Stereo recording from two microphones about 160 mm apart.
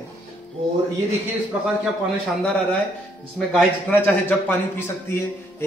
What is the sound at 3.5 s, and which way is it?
A man's voice, 10° left (ahead or behind).